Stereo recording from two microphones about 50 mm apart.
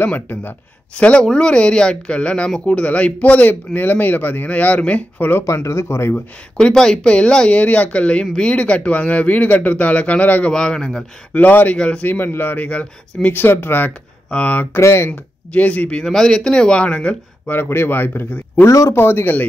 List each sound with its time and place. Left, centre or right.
0.0 s a man's voice: left
0.9 s speech: left
5.5 s speech: left
6.7 s speech: centre; by 10.5 s left
10.5 s speech: centre
11.3 s a man's voice: left
12.5 s speech: left
13.3 s speech: left
14.3 s speech: left
14.8 s speech: left
15.0 s speech: left
16.0 s speech: centre
17.6 s a man's voice: left